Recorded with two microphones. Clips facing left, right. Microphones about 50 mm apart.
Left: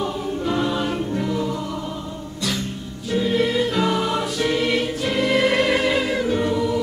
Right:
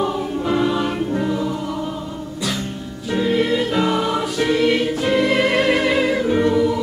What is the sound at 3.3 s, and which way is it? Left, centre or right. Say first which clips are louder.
Music: right 1 dB; centre.